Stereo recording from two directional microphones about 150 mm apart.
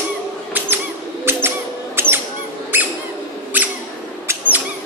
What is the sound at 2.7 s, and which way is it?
Mouse, 15° right (ahead or behind).